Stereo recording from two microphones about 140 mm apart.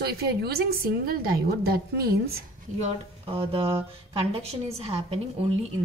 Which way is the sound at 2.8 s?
45° right (ahead or behind).